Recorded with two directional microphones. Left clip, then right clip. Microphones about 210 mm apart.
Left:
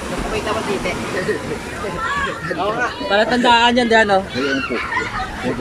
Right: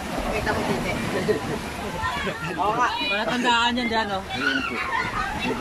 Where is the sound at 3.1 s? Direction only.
40° left (ahead or behind).